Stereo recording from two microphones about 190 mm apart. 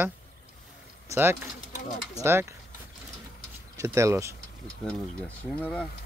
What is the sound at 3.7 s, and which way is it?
Speech, 15° right (ahead or behind).